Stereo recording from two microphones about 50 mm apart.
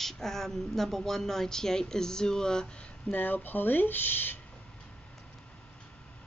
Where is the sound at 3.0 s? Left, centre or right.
Left.